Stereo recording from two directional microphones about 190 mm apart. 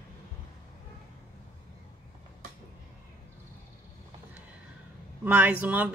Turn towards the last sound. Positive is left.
turn(degrees=-10)  # may be behind; listen again after turning